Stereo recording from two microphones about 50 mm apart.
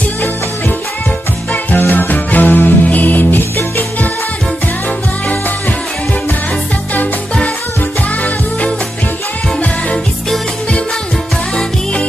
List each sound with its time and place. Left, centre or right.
1.5 s music: left